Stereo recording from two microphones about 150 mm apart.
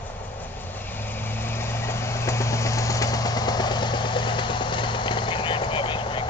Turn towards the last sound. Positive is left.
turn(degrees=35)  # may be behind; listen again after turning